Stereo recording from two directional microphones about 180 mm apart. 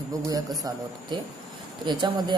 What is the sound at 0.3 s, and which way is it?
Speech, 20° right (ahead or behind).